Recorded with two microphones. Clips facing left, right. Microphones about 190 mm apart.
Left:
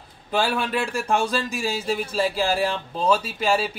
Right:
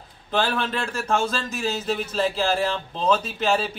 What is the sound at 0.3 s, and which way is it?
Speech, 10° left (ahead or behind).